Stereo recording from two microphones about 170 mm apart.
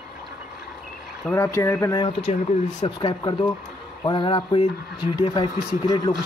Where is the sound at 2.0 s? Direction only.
30° left (ahead or behind).